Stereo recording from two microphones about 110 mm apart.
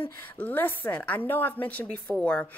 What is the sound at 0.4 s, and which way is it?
A woman's voice, 15° left (ahead or behind).